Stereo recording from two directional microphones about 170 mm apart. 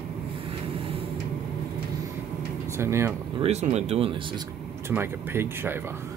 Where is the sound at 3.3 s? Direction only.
35° right (ahead or behind).